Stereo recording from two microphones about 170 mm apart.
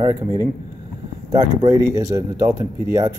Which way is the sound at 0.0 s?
20° right (ahead or behind).